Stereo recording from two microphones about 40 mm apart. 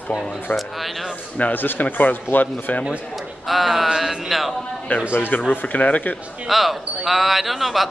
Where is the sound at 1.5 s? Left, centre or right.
Left.